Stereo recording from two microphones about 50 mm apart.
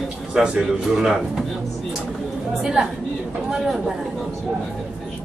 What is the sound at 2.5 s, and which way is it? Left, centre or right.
Speech, centre.